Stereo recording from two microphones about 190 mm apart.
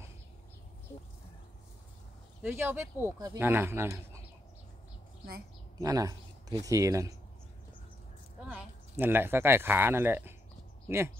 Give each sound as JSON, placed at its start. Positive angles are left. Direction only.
{"t": 2.4, "sound": "speech", "side_deg": -10}
{"t": 5.8, "sound": "a man's voice", "side_deg": -15}
{"t": 8.5, "sound": "speech", "side_deg": -10}